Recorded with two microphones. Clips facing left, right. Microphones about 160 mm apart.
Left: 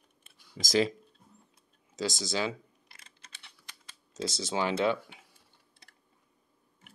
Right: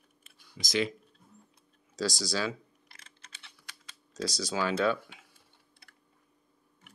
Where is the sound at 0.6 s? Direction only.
40° left (ahead or behind).